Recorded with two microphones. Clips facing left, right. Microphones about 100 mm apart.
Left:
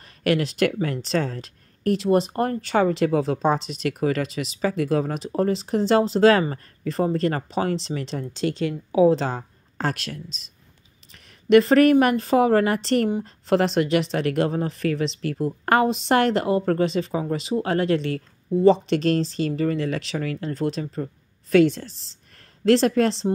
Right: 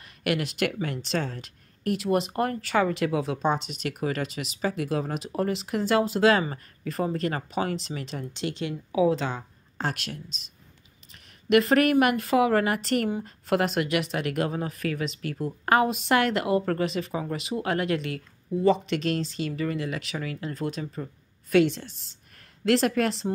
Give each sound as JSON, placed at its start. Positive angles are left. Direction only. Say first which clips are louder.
{"t": 0.0, "sound": "speech", "louder": "left 5 dB", "side_deg": 35}
{"t": 11.4, "sound": "speech", "louder": "left 6 dB", "side_deg": 35}
{"t": 20.2, "sound": "speech", "louder": "left 5 dB", "side_deg": 45}
{"t": 20.5, "sound": "speech", "louder": "left 5 dB", "side_deg": 30}